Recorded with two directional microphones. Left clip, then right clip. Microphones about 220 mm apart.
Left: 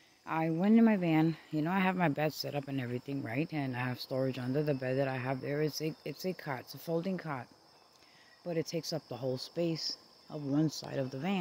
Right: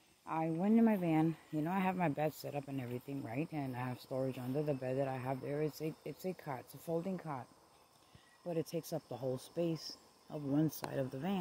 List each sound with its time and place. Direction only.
0.2 s speech: 20° left (ahead or behind)
8.5 s speech: centre (ahead or behind)